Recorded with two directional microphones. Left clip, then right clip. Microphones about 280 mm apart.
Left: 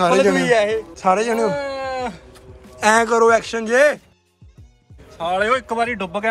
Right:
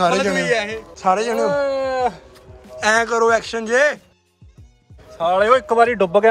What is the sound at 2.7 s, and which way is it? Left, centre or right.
Speech, centre.